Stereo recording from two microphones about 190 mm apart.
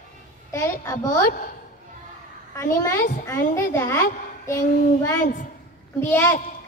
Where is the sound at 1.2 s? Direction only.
50° left (ahead or behind).